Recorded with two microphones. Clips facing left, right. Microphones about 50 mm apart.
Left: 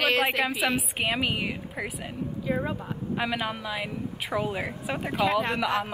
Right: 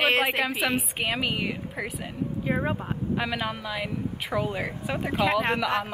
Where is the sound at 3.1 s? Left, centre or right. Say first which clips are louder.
Even; centre.